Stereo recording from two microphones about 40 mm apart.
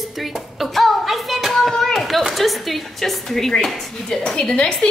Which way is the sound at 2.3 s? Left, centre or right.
Centre.